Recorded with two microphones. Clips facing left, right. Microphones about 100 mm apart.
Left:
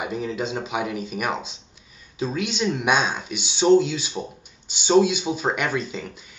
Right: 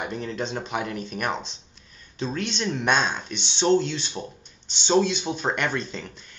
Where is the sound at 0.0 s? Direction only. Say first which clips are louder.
Left 3 dB; 5° left (ahead or behind).